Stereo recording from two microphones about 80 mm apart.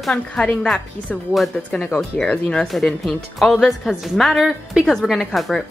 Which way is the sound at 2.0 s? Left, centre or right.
Centre.